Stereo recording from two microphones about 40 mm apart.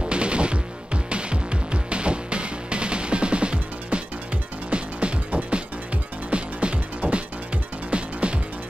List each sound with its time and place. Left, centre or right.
0.0 s music: right